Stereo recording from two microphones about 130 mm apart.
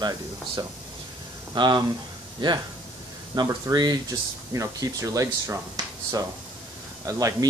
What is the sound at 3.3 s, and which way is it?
Speech, 30° right (ahead or behind).